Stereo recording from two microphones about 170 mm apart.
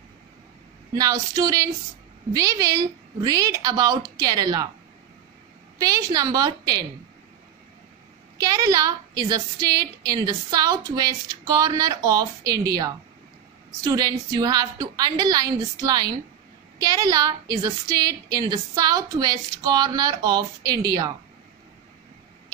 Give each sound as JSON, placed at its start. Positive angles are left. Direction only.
{"t": 0.9, "sound": "a woman's voice", "side_deg": -20}
{"t": 5.8, "sound": "a woman's voice", "side_deg": -20}
{"t": 8.4, "sound": "a woman's voice", "side_deg": -20}